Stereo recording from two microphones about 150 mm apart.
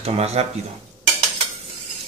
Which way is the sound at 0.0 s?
45° right (ahead or behind).